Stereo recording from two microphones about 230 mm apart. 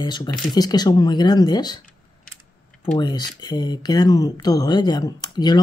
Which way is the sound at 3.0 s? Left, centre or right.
Centre.